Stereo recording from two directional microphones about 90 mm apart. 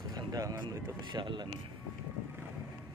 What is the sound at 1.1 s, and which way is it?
Speech, 65° right (ahead or behind).